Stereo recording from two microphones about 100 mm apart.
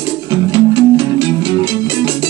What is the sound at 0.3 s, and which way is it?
Music, 45° right (ahead or behind).